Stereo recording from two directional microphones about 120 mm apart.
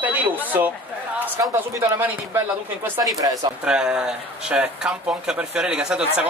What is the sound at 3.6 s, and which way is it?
Speech, 5° right (ahead or behind).